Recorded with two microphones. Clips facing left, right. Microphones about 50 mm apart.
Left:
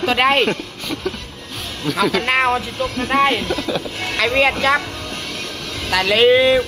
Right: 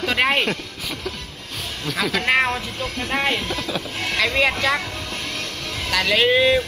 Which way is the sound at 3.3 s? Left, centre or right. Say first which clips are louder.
Left 4 dB; left.